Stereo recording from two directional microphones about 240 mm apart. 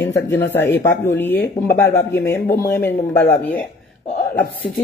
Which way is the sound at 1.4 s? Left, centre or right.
Left.